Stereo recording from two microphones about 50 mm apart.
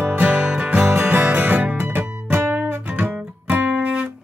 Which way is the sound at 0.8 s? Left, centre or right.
Right.